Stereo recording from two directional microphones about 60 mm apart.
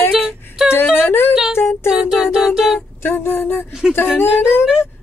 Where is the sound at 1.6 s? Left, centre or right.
Left.